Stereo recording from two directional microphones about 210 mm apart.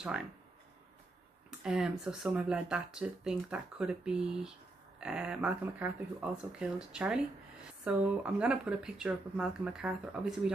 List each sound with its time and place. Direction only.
1.6 s speech: 5° right (ahead or behind)